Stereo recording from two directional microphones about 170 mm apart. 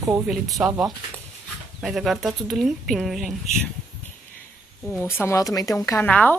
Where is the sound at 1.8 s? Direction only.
Centre (ahead or behind).